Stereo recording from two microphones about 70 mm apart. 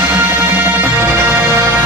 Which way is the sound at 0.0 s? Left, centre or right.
Right.